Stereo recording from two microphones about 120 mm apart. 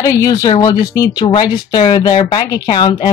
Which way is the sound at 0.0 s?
25° left (ahead or behind).